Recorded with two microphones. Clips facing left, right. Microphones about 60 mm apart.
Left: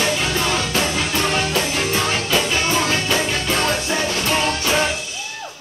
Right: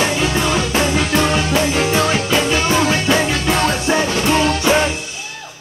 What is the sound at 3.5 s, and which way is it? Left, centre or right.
Music, right.